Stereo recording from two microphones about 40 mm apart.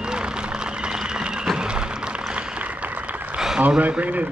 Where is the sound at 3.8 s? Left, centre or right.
Right.